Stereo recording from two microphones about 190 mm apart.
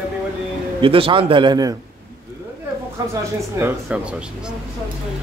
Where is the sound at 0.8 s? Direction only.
30° right (ahead or behind).